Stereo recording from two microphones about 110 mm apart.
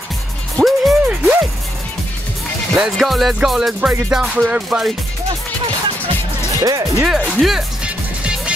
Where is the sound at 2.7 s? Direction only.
Centre (ahead or behind).